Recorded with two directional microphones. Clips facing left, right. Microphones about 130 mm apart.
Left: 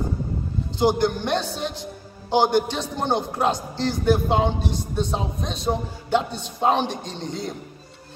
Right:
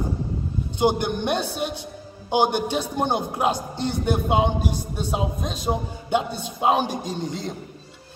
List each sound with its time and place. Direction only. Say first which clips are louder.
0.7 s a man's voice: left 1 dB; 15° right (ahead or behind)